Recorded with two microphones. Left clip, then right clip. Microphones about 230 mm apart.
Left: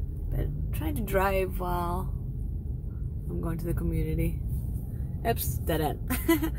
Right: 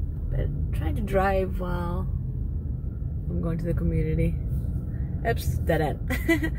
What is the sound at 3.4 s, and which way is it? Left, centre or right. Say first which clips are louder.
Speech: right 4 dB; centre.